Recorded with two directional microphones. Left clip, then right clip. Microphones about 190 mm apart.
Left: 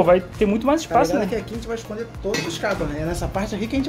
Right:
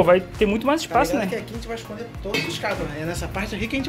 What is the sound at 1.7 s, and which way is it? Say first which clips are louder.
A woman's voice: left 4 dB; 60° left (ahead or behind).